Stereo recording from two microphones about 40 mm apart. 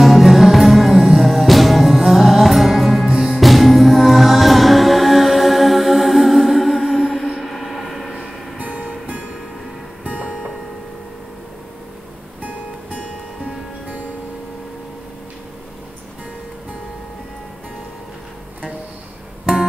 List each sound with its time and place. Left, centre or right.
0.0 s music: centre
7.3 s a sound: centre
8.5 s music: right
10.0 s music: right